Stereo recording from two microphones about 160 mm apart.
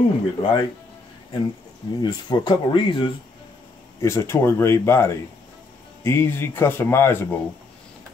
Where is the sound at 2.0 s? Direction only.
25° left (ahead or behind).